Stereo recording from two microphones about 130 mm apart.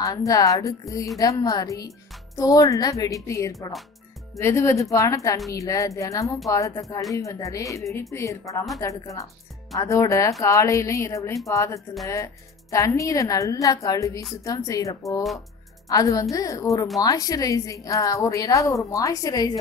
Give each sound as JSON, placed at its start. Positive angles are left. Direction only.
{"t": 0.0, "sound": "a woman's voice", "side_deg": 25}